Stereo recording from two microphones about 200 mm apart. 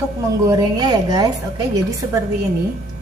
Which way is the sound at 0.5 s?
20° right (ahead or behind).